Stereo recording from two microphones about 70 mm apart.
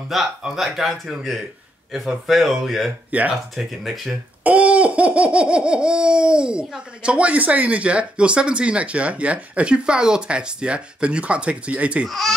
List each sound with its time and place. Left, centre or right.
0.1 s speech: centre
3.1 s speech: right
3.5 s speech: centre
4.4 s speech: right
12.1 s speech: centre